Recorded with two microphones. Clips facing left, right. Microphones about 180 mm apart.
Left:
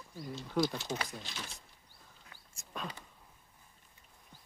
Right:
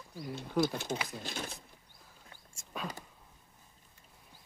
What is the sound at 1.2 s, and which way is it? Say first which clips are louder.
Speech: right 6 dB; 50° right (ahead or behind).